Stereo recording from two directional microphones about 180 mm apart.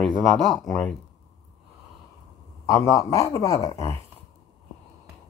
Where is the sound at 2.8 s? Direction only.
20° left (ahead or behind).